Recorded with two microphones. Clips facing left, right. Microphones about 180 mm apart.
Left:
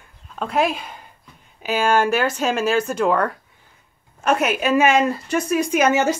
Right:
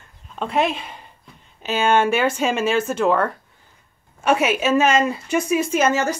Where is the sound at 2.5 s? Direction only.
5° left (ahead or behind).